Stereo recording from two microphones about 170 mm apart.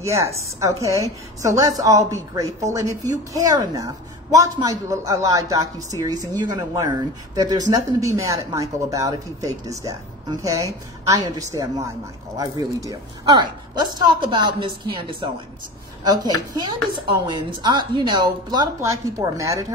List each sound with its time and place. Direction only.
0.0 s a woman's voice: 15° right (ahead or behind)
17.3 s a woman's voice: 25° right (ahead or behind)